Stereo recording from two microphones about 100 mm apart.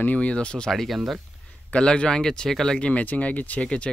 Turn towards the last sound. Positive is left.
turn(degrees=10)  # may be behind; listen again after turning